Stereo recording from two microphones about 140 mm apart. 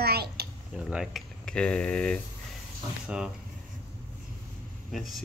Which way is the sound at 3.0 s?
5° right (ahead or behind).